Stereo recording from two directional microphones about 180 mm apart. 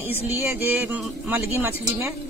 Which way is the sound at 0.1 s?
15° right (ahead or behind).